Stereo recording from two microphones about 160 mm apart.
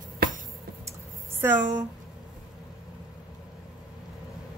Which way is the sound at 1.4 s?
15° right (ahead or behind).